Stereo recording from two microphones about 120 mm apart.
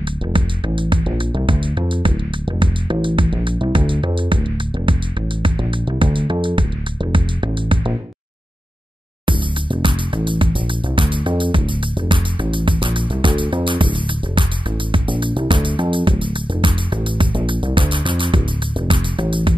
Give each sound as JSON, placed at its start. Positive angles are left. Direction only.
{"t": 0.3, "sound": "music", "side_deg": -45}
{"t": 5.4, "sound": "music", "side_deg": -45}
{"t": 9.2, "sound": "music", "side_deg": -45}